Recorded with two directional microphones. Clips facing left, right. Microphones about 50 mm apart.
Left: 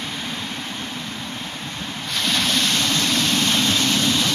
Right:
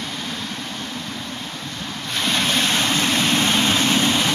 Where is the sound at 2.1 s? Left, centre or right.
Centre.